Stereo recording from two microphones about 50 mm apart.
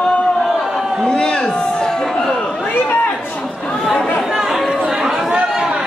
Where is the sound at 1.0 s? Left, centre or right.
Centre.